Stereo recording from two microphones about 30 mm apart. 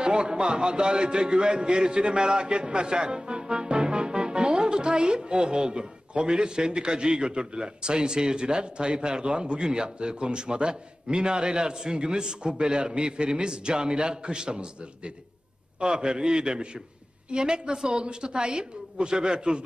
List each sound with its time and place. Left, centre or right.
0.0 s a man's voice: right